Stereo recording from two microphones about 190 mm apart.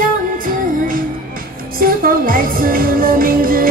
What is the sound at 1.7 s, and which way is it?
Music, 50° right (ahead or behind).